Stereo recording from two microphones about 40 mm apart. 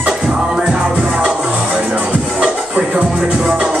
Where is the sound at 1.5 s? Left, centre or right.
Right.